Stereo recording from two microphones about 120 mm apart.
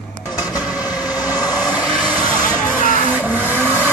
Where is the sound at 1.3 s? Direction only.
35° left (ahead or behind).